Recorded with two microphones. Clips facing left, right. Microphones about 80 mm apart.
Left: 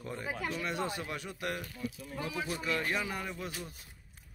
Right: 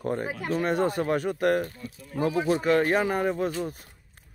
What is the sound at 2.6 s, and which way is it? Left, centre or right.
Speech, right.